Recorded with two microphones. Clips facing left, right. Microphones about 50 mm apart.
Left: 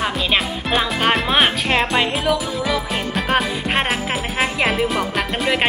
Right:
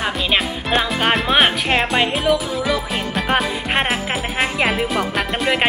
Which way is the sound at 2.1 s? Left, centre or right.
Centre.